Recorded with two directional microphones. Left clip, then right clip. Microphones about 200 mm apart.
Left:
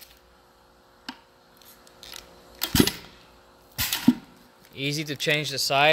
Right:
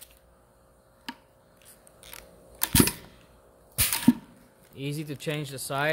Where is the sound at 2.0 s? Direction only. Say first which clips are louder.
Left 5 dB; 25° right (ahead or behind).